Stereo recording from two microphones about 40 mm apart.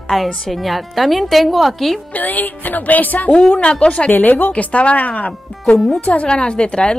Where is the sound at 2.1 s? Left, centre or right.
Left.